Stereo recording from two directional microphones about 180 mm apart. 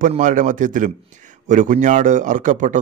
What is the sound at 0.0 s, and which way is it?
A man's voice, 45° right (ahead or behind).